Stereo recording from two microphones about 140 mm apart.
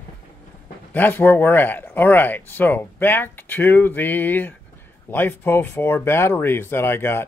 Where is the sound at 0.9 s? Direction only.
15° left (ahead or behind).